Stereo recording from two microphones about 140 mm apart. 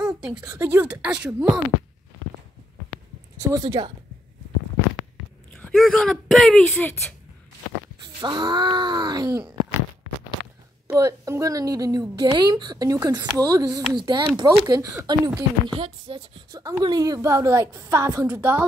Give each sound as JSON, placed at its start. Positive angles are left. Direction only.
{"t": 0.3, "sound": "a woman's voice", "side_deg": -30}
{"t": 0.6, "sound": "speech", "side_deg": -15}
{"t": 3.3, "sound": "a woman's voice", "side_deg": -25}
{"t": 5.5, "sound": "speech", "side_deg": 5}
{"t": 8.0, "sound": "speech", "side_deg": -30}
{"t": 10.9, "sound": "a woman's voice", "side_deg": -20}
{"t": 15.8, "sound": "speech", "side_deg": -40}
{"t": 16.5, "sound": "a woman's voice", "side_deg": -30}